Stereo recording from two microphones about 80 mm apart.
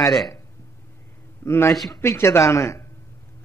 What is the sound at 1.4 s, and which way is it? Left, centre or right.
Speech, left.